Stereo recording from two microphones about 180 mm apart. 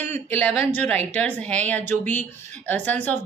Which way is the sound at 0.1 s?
10° left (ahead or behind).